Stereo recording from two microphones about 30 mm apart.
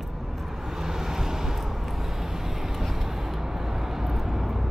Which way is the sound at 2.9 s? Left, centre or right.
Centre.